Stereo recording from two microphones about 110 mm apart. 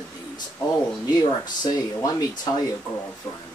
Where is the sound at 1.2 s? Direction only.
35° left (ahead or behind).